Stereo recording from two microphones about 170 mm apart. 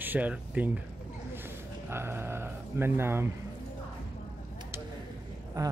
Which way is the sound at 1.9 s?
15° right (ahead or behind).